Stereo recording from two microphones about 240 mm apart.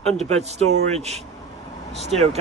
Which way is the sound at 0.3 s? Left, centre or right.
Right.